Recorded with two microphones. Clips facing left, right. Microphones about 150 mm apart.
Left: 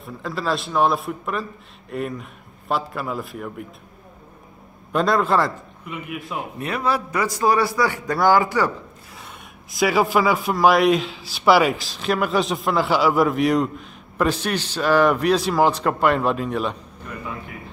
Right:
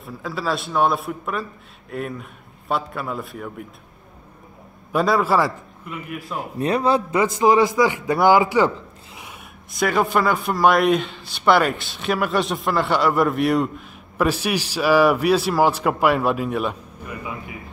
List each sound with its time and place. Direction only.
0.0 s a man's voice: centre (ahead or behind)
4.9 s a man's voice: 5° right (ahead or behind)
6.6 s a man's voice: 30° right (ahead or behind)
9.7 s a man's voice: 5° left (ahead or behind)